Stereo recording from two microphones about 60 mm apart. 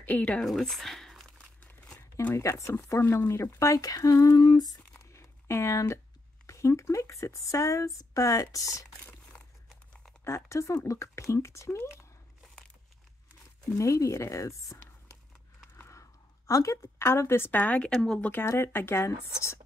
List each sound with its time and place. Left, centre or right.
0.0 s a woman's voice: left
0.4 s crumpling: centre
2.3 s speech: left
3.5 s speech: left
4.9 s crumpling: left
6.4 s speech: left
10.2 s speech: left
13.7 s speech: left
15.7 s a sound: left
17.5 s speech: left
17.8 s speech: centre
18.3 s speech: left